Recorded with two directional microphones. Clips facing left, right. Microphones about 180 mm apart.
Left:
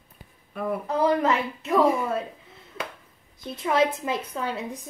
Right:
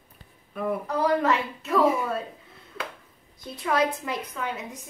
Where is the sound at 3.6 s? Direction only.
20° left (ahead or behind).